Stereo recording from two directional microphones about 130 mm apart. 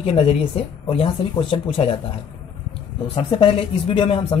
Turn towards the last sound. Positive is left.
turn(degrees=40)  # may be behind; listen again after turning